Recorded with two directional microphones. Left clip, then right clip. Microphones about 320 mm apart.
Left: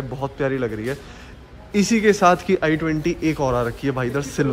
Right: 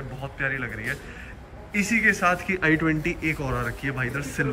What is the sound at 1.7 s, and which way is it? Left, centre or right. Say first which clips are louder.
A man's voice: left 4 dB; centre.